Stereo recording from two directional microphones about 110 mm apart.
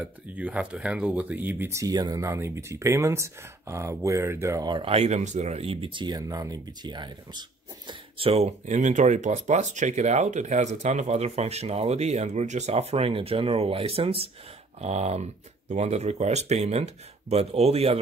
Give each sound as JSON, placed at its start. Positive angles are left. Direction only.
{"t": 0.0, "sound": "speech", "side_deg": -15}
{"t": 1.9, "sound": "speech", "side_deg": -35}
{"t": 4.8, "sound": "speech", "side_deg": -80}
{"t": 8.3, "sound": "speech", "side_deg": -80}
{"t": 14.8, "sound": "speech", "side_deg": -85}